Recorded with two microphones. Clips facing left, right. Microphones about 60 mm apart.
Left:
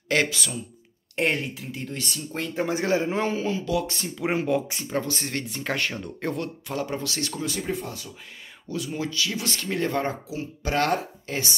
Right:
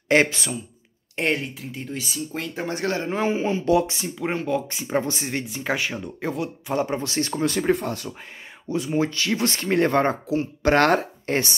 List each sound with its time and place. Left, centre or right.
0.1 s speech: right
1.1 s speech: centre
2.7 s speech: centre
3.3 s speech: right
3.9 s speech: centre
4.2 s speech: centre
4.8 s speech: right
5.1 s speech: centre
5.4 s speech: centre
6.7 s speech: right
7.4 s speech: right
8.6 s speech: right